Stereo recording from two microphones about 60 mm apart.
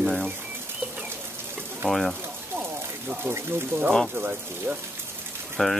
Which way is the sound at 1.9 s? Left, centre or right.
Centre.